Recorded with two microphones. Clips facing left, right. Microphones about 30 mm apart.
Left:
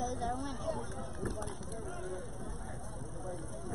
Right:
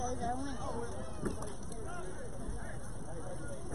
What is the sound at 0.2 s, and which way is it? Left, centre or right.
Speech, left.